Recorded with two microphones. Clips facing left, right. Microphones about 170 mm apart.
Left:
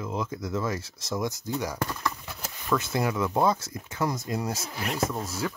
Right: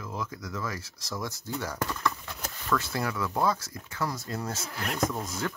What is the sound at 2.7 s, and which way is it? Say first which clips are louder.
Speech: left 3 dB; 20° left (ahead or behind).